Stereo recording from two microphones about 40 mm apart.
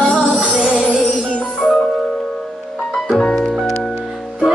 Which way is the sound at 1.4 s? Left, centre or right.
Centre.